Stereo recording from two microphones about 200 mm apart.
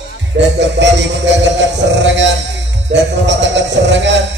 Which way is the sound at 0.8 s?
65° right (ahead or behind).